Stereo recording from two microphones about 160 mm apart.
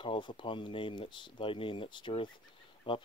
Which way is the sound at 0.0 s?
30° left (ahead or behind).